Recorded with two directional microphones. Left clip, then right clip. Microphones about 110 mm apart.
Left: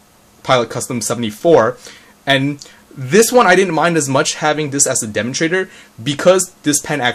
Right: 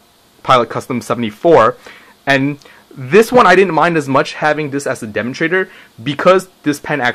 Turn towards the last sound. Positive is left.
turn(degrees=-30)  # may be behind; listen again after turning